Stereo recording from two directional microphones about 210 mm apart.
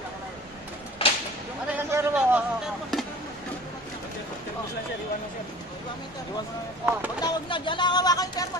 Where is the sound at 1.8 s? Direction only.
10° right (ahead or behind).